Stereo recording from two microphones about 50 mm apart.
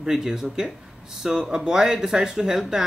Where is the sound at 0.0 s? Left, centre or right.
Centre.